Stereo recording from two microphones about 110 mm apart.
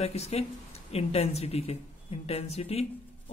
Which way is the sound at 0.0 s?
70° left (ahead or behind).